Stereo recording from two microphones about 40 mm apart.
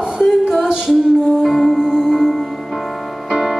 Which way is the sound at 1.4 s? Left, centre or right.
Centre.